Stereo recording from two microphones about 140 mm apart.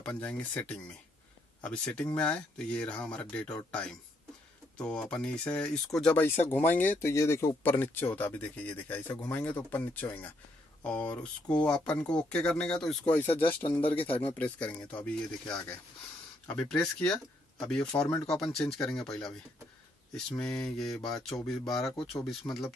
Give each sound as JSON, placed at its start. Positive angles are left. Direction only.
{"t": 0.0, "sound": "speech", "side_deg": 10}
{"t": 7.0, "sound": "speech", "side_deg": 20}
{"t": 13.3, "sound": "speech", "side_deg": 40}
{"t": 14.2, "sound": "speech", "side_deg": 10}